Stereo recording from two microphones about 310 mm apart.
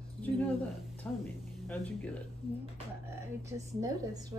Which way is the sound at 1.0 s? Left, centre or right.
Centre.